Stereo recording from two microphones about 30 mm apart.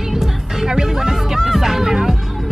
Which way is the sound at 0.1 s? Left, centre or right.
Centre.